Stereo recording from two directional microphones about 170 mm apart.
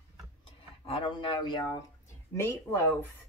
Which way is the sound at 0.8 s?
30° left (ahead or behind).